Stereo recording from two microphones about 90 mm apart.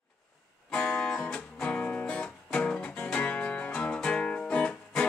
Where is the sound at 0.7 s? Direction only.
10° left (ahead or behind).